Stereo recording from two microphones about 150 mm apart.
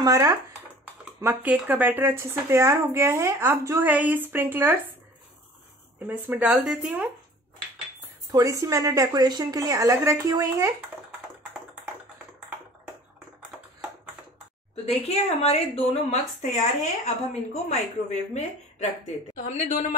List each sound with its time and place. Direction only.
0.0 s a woman's voice: 20° right (ahead or behind)
1.2 s a woman's voice: 10° right (ahead or behind)
6.0 s a woman's voice: 10° right (ahead or behind)
8.3 s a woman's voice: 20° right (ahead or behind)
14.9 s a woman's voice: 40° left (ahead or behind)
19.3 s a woman's voice: 55° left (ahead or behind)